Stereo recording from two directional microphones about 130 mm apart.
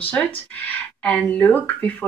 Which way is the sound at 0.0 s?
10° left (ahead or behind).